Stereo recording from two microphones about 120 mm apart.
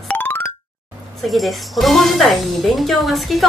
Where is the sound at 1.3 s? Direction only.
Centre (ahead or behind).